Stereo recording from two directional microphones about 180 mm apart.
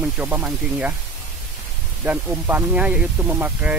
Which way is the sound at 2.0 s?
10° right (ahead or behind).